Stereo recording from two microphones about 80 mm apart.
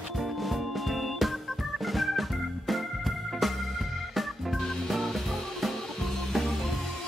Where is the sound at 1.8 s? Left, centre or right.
Centre.